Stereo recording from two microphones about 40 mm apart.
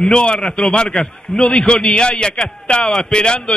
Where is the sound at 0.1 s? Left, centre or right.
Left.